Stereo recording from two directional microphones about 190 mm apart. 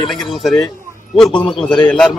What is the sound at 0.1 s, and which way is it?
Speech, centre (ahead or behind).